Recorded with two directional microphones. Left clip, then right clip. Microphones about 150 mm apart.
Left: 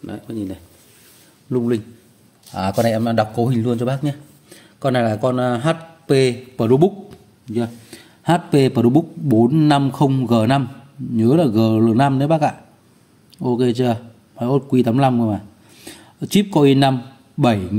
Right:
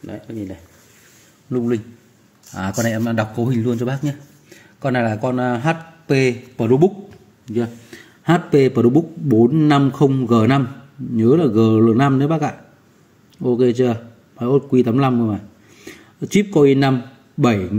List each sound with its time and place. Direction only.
0.0 s a man's voice: 35° left (ahead or behind)
13.4 s a man's voice: 30° left (ahead or behind)